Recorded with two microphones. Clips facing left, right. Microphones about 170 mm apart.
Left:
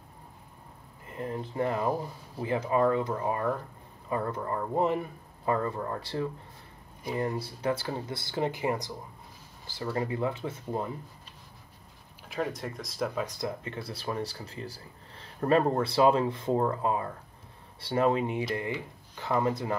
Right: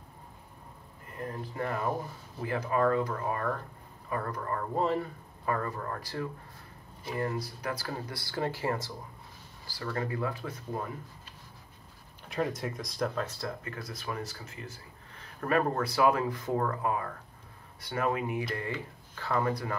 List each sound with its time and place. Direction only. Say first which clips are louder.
1.1 s speech: left 4 dB; 20° left (ahead or behind)
7.3 s speech: left 5 dB; 25° left (ahead or behind)
12.5 s speech: even; centre (ahead or behind); by 13.7 s 15° left (ahead or behind)
13.7 s speech: left 4 dB; 30° left (ahead or behind)